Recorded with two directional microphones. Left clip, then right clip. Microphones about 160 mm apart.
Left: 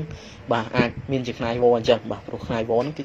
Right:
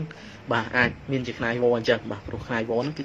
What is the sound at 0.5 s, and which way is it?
Speech, 10° left (ahead or behind).